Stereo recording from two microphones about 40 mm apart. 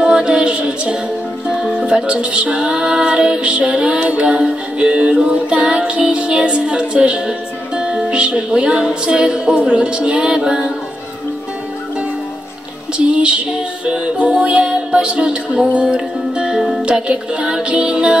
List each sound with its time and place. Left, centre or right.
0.1 s music: right
2.7 s music: right
12.9 s music: right